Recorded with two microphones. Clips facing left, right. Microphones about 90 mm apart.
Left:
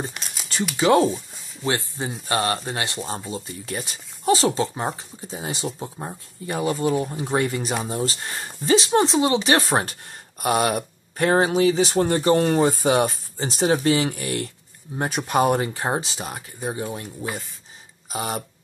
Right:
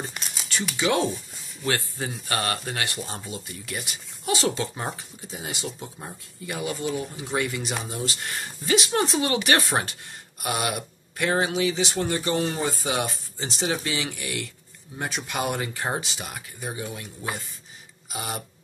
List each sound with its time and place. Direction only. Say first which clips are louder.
0.1 s a sound: even; centre (ahead or behind)
0.7 s speech: left 7 dB; 35° left (ahead or behind)
1.1 s speech: left 4 dB; 20° left (ahead or behind); by 18.4 s 40° left (ahead or behind)